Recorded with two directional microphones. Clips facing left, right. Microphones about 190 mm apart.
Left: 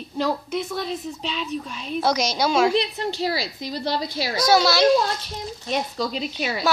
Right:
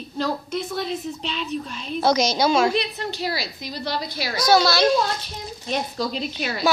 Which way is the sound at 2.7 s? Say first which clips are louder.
Left 2 dB; 25° left (ahead or behind).